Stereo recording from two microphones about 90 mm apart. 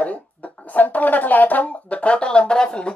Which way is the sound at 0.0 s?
15° left (ahead or behind).